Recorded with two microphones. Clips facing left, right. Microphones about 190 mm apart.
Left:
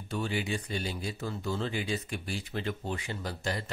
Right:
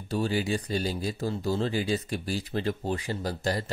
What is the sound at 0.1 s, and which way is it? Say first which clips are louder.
Speech: right 5 dB; 35° right (ahead or behind).